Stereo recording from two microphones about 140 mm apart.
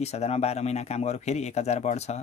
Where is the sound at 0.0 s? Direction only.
50° left (ahead or behind).